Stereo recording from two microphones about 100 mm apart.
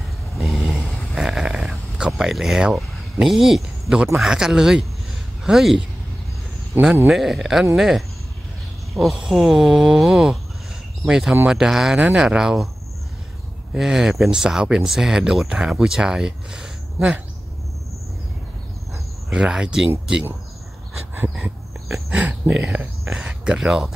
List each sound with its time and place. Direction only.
0.4 s snoring: centre (ahead or behind)
4.2 s speech: 5° right (ahead or behind)
7.1 s speech: 5° right (ahead or behind)
13.7 s speech: 5° right (ahead or behind)
19.3 s speech: 5° right (ahead or behind)
21.1 s a sound: 15° right (ahead or behind)
21.8 s speech: 5° right (ahead or behind)